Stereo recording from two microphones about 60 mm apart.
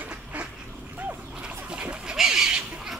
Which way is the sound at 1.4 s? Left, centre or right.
Centre.